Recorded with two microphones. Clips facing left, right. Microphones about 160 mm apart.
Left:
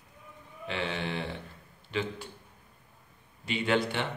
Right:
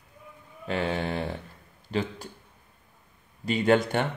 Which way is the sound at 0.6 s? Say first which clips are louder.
Right 5 dB; 40° right (ahead or behind).